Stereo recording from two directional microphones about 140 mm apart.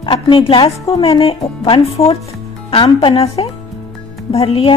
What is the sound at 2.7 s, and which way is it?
Speech, 35° left (ahead or behind).